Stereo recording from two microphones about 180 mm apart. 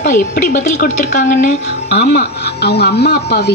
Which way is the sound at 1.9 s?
65° left (ahead or behind).